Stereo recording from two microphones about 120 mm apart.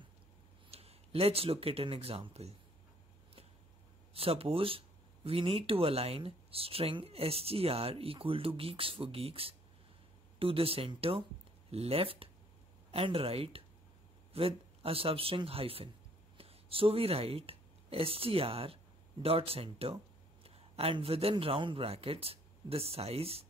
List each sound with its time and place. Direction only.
0.7 s speech: 55° right (ahead or behind)
4.1 s a man's voice: 55° right (ahead or behind)